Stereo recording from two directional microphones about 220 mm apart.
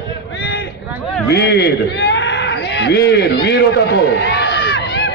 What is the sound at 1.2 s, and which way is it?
A man's voice, 50° left (ahead or behind).